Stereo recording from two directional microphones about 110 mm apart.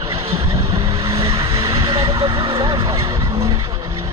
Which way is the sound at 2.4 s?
45° right (ahead or behind).